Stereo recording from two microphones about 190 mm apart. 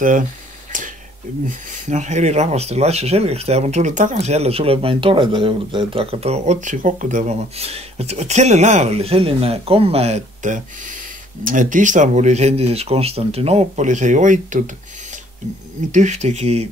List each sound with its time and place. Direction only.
1.5 s speech: 40° right (ahead or behind)
15.9 s speech: 40° right (ahead or behind)